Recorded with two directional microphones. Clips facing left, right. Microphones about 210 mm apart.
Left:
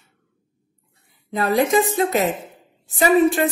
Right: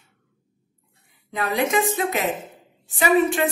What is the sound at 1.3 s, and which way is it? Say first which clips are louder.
A woman's voice: left 4 dB; 35° left (ahead or behind).